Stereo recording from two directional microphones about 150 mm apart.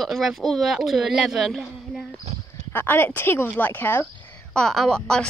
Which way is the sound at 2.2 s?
45° right (ahead or behind).